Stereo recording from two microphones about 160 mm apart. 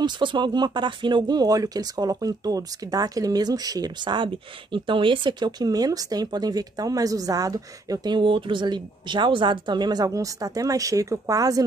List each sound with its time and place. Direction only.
0.0 s speech: 30° right (ahead or behind)